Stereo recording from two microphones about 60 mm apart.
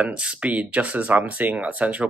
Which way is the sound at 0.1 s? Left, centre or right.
Centre.